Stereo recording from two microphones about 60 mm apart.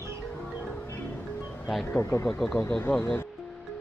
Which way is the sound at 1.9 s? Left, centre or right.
Left.